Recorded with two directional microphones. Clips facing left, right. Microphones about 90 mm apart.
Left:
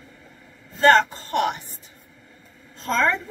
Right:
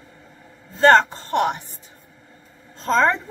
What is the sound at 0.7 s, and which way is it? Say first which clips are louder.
Speech: right 2 dB; 30° right (ahead or behind).